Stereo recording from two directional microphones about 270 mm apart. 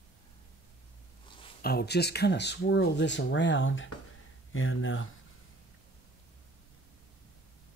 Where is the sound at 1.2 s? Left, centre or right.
Centre.